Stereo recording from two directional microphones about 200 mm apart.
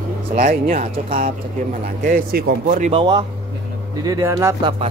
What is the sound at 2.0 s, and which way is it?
Speech, 45° right (ahead or behind).